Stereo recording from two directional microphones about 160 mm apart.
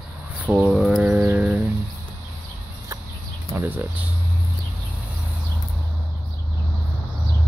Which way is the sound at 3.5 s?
10° right (ahead or behind).